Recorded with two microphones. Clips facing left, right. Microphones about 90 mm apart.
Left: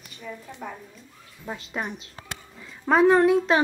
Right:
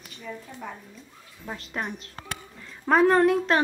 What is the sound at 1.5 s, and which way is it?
Speech, centre (ahead or behind).